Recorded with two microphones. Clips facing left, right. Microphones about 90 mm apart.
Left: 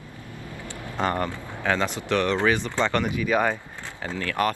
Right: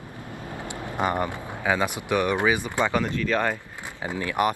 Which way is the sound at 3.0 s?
10° left (ahead or behind).